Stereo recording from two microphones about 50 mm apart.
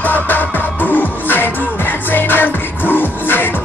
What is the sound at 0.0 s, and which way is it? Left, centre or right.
Music, left.